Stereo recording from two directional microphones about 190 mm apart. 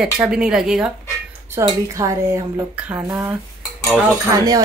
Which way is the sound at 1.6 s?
15° right (ahead or behind).